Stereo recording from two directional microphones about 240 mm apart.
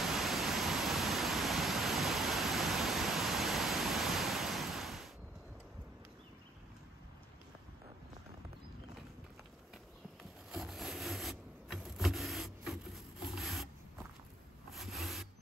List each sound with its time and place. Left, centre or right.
0.0 s pink noise: centre
10.5 s power windows: centre
14.7 s rub: centre